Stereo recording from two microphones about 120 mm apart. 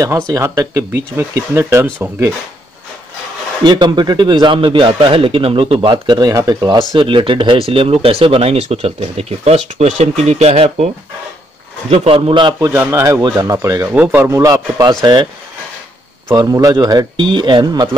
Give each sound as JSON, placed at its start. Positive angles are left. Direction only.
{"t": 0.3, "sound": "speech", "side_deg": -25}
{"t": 3.6, "sound": "a man's voice", "side_deg": -40}
{"t": 11.9, "sound": "speech", "side_deg": -55}
{"t": 12.5, "sound": "speech", "side_deg": -20}
{"t": 13.9, "sound": "speech", "side_deg": -15}
{"t": 16.3, "sound": "a man's voice", "side_deg": -30}